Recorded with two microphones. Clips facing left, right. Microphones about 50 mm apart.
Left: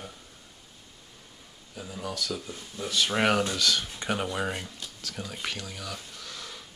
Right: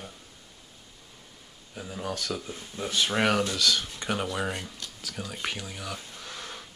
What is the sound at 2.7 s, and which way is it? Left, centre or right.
Speech, right.